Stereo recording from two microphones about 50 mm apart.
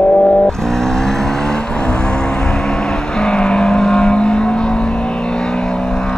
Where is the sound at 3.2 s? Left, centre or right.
Centre.